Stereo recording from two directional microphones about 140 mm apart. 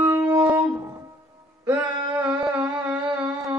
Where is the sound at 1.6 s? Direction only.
10° right (ahead or behind).